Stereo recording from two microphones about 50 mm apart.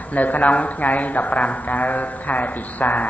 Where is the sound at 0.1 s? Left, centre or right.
Left.